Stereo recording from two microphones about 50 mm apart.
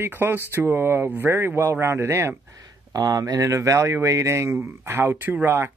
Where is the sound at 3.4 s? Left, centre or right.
Right.